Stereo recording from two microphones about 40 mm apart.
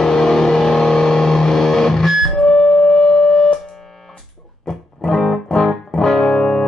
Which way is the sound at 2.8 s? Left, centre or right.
Centre.